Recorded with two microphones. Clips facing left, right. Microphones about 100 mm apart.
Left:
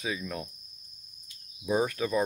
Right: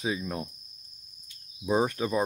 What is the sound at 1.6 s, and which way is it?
Cricket, 25° right (ahead or behind).